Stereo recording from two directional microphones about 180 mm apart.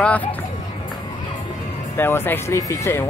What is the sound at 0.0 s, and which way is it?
Speech, 10° left (ahead or behind).